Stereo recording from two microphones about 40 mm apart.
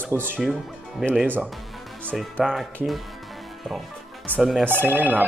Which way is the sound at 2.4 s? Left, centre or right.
Centre.